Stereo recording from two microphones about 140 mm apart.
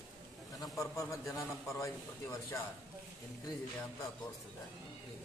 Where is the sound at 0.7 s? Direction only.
20° left (ahead or behind).